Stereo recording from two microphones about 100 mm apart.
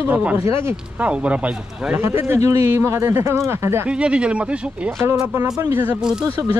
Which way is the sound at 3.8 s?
10° right (ahead or behind).